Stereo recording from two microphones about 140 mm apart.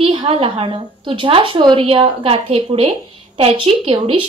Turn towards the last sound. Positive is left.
turn(degrees=-40)  # may be behind; listen again after turning